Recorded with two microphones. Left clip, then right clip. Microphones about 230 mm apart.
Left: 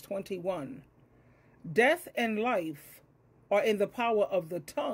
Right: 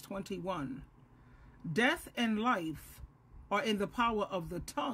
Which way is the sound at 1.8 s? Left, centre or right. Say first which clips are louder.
Left 6 dB; centre.